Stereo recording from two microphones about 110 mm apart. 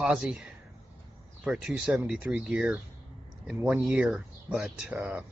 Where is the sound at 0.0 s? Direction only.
10° right (ahead or behind).